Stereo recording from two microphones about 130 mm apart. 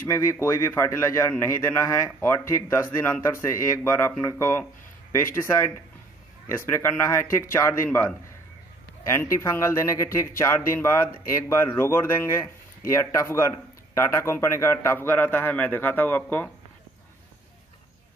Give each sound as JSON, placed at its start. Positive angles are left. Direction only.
{"t": 0.1, "sound": "speech", "side_deg": 20}
{"t": 6.7, "sound": "speech", "side_deg": 20}